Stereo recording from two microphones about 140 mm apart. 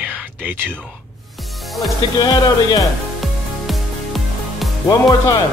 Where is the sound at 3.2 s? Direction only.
Centre (ahead or behind).